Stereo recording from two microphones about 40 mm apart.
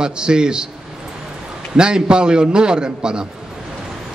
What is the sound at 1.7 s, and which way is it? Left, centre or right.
A man's voice, right.